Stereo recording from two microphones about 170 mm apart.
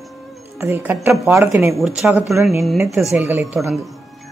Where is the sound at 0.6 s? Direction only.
10° right (ahead or behind).